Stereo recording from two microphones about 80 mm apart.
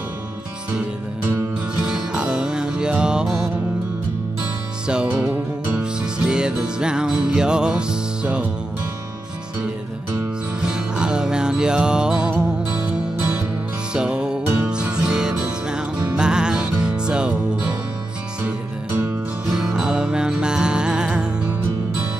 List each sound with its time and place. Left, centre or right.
1.8 s music: centre
4.8 s music: centre
10.6 s music: centre
19.5 s music: centre